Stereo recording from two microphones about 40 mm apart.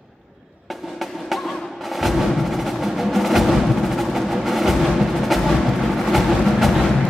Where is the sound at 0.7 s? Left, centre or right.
Centre.